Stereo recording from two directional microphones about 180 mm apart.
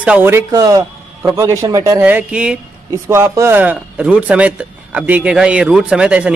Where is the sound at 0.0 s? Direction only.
10° right (ahead or behind).